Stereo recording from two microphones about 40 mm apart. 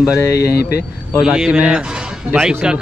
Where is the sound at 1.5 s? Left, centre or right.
Right.